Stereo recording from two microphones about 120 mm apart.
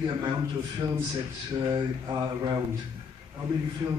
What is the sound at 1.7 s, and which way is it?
Mantra, 30° right (ahead or behind).